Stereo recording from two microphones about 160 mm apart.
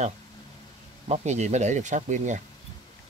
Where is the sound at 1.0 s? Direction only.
45° right (ahead or behind).